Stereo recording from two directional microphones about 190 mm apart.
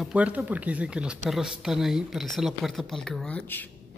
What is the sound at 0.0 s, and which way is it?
Speech, 5° right (ahead or behind).